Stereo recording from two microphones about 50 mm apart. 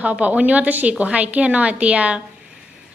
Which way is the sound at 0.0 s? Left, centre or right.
Right.